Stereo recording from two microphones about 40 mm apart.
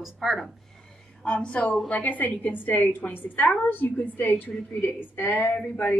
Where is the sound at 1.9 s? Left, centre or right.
Left.